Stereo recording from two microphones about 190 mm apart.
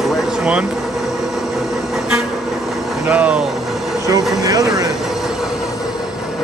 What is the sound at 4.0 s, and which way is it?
Vehicle, 20° right (ahead or behind).